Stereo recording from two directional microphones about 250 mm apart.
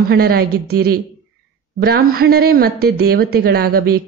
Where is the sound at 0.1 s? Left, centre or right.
Right.